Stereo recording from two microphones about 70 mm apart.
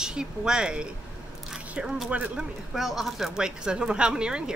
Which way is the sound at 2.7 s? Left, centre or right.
Centre.